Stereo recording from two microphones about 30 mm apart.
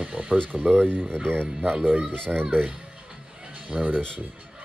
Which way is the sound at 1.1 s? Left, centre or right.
Right.